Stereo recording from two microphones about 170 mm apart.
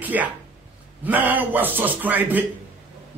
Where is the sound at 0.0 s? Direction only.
10° right (ahead or behind).